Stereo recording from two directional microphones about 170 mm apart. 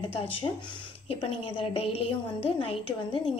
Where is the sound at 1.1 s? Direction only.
35° left (ahead or behind).